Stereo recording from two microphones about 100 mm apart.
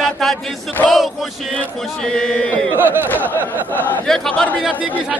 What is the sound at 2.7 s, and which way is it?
Speech, 20° right (ahead or behind).